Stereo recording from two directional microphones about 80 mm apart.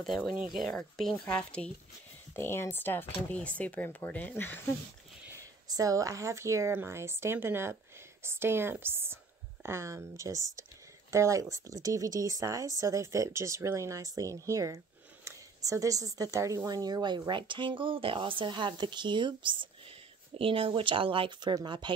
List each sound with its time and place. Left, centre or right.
0.2 s speech: centre
2.3 s speech: left
5.7 s speech: right
20.7 s speech: right